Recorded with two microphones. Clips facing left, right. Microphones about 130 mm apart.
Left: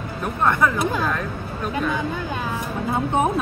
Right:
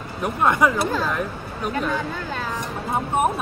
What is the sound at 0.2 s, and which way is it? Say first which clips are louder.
Speech: right 1 dB; 10° right (ahead or behind).